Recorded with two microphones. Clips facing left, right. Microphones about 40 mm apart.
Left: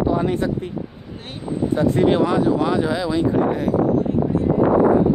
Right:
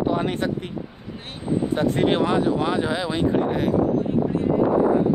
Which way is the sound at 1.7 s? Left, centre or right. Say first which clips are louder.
Left 5 dB; right.